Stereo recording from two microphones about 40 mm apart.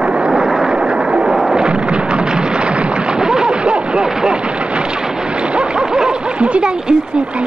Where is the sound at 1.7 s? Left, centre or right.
Right.